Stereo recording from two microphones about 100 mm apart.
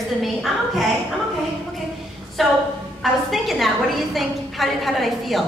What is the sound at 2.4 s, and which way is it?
A woman's voice, centre (ahead or behind).